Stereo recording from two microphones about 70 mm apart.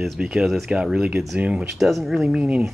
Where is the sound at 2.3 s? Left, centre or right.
Centre.